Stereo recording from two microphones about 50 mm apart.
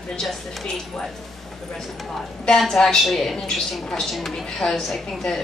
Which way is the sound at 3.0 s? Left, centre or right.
Centre.